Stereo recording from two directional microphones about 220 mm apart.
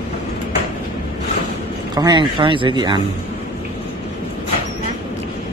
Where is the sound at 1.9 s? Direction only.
20° right (ahead or behind).